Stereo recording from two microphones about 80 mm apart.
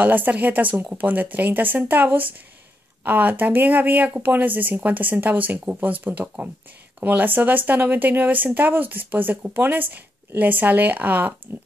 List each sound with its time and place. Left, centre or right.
0.0 s speech: right